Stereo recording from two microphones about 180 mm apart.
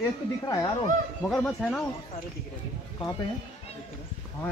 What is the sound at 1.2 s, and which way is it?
Speech, 5° left (ahead or behind).